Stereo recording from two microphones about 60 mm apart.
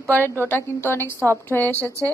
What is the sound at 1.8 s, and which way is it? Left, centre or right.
Speech, right.